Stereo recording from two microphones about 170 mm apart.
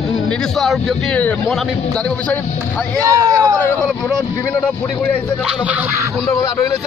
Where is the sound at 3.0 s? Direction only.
20° right (ahead or behind).